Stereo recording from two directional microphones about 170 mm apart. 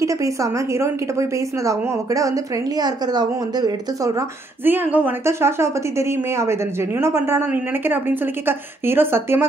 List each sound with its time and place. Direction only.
0.0 s a woman's voice: 20° right (ahead or behind)
4.6 s a woman's voice: 10° right (ahead or behind)